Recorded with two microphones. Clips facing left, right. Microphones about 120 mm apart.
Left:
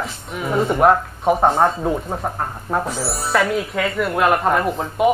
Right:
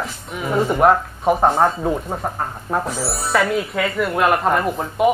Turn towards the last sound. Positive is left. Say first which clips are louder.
# even
turn(degrees=0)  # may be behind; listen again after turning